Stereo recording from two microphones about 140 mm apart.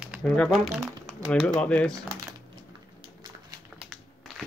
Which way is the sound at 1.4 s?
10° left (ahead or behind).